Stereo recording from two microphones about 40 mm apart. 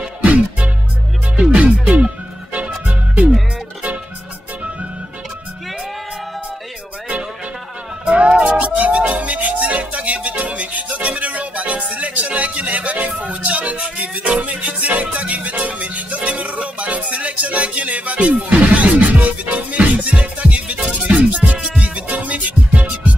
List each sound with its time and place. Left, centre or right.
0.2 s music: right
8.0 s music: right